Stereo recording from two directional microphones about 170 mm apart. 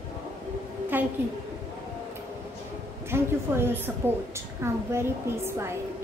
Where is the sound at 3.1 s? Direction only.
15° right (ahead or behind).